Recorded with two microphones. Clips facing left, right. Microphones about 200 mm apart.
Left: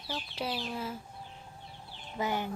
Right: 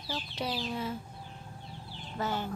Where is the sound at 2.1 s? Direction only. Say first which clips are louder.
Left 1 dB; 15° left (ahead or behind).